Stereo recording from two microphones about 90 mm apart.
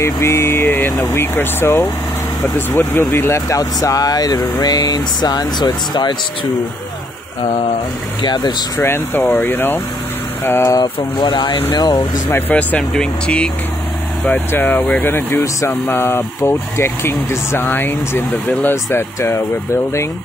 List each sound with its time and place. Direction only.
0.0 s speech: 30° left (ahead or behind); by 5.7 s 50° left (ahead or behind)
8.2 s speech: 50° left (ahead or behind)
8.8 s speech: 25° left (ahead or behind)
10.7 s speech: 50° left (ahead or behind)
12.3 s speech: 20° left (ahead or behind)
14.5 s speech: 20° left (ahead or behind)
15.1 s speech: 30° left (ahead or behind)